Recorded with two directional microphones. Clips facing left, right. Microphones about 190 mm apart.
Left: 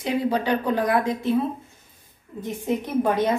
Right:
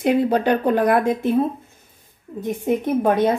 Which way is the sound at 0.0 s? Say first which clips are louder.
Right 6 dB; 55° right (ahead or behind).